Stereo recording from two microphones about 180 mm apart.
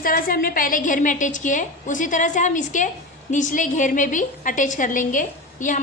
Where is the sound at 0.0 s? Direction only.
50° left (ahead or behind).